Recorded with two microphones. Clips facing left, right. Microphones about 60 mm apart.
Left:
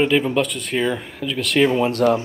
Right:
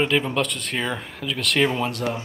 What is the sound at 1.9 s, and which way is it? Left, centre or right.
Speech, left.